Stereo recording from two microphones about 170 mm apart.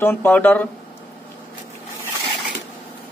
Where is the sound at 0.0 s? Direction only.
15° left (ahead or behind).